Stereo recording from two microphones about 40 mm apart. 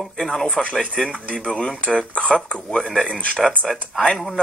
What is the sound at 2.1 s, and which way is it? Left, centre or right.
Speech, left.